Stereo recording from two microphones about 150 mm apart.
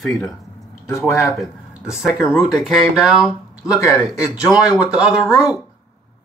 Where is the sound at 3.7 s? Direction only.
20° left (ahead or behind).